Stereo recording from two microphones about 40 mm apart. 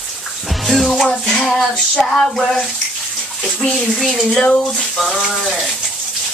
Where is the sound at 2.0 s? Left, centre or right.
Centre.